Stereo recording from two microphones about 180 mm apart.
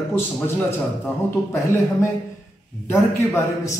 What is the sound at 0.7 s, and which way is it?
A man's voice, 15° left (ahead or behind).